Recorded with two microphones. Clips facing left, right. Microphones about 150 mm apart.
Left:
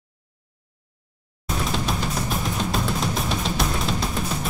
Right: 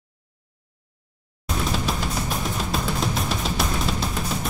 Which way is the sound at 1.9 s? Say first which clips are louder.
Left 1 dB; centre (ahead or behind).